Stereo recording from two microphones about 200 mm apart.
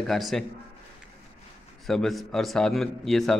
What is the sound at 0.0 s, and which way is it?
Speech, centre (ahead or behind).